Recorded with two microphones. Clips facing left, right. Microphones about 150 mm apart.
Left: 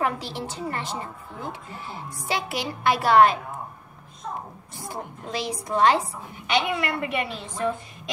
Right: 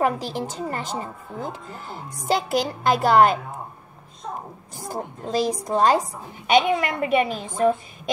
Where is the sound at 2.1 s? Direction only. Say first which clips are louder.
Right 7 dB; 40° right (ahead or behind).